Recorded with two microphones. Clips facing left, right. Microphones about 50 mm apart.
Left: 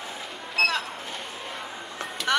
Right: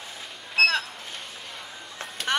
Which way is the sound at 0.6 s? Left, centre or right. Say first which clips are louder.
Right 2 dB; centre.